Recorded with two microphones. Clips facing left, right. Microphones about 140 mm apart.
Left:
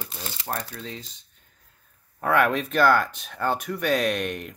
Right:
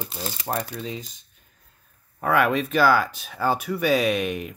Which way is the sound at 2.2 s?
Centre (ahead or behind).